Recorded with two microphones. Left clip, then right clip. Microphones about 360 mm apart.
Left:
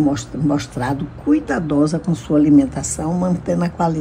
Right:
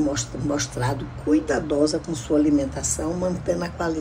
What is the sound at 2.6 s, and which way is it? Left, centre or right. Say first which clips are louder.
A woman's voice: left 5 dB; centre.